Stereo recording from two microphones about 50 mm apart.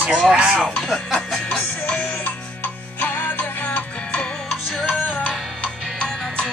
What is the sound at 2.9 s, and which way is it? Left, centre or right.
Music, left.